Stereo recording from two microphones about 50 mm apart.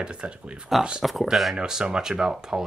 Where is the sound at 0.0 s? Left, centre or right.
Right.